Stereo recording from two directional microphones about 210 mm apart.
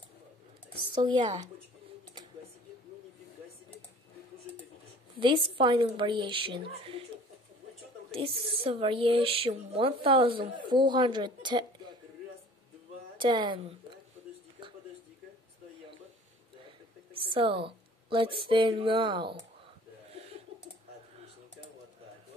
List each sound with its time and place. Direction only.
0.9 s speech: 20° right (ahead or behind)
5.1 s a woman's voice: 25° right (ahead or behind)
8.1 s speech: 25° right (ahead or behind)
13.2 s speech: 20° right (ahead or behind)
17.1 s speech: 25° right (ahead or behind)